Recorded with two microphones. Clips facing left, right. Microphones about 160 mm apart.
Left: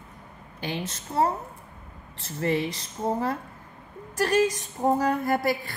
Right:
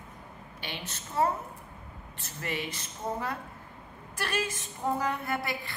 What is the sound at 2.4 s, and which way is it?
A woman's voice, 35° left (ahead or behind).